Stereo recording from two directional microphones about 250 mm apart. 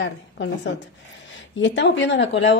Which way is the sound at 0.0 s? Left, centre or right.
Left.